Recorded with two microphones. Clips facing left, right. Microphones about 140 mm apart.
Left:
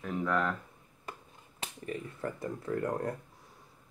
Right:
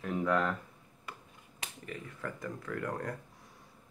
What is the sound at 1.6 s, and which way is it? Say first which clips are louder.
Speech: left 5 dB; 30° left (ahead or behind).